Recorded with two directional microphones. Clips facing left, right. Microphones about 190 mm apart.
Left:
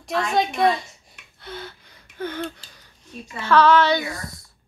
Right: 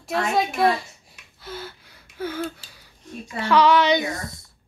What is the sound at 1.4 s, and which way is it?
Gasp, 5° right (ahead or behind).